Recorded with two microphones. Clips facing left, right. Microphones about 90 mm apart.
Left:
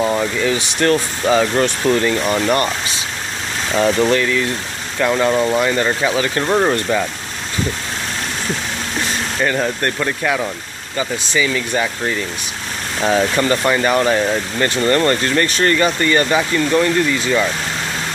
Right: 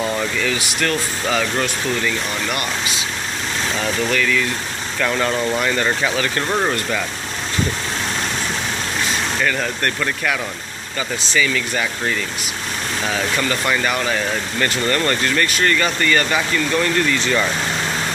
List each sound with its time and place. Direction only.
0.0 s speech: 20° left (ahead or behind); by 2.7 s 40° left (ahead or behind)
3.7 s speech: 30° left (ahead or behind)
9.4 s speech: 25° left (ahead or behind)